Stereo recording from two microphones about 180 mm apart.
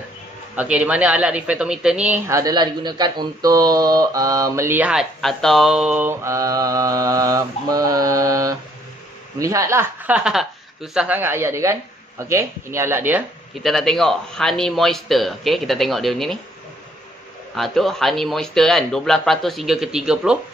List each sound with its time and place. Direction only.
0.6 s a man's voice: 5° right (ahead or behind)
13.6 s speech: centre (ahead or behind)
17.6 s speech: centre (ahead or behind)